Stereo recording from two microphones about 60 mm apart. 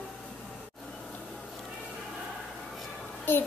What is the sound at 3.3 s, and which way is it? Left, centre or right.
Child singing, left.